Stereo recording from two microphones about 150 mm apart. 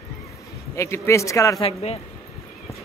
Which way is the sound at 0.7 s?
20° left (ahead or behind).